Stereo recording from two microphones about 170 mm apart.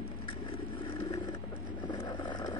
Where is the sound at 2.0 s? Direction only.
25° left (ahead or behind).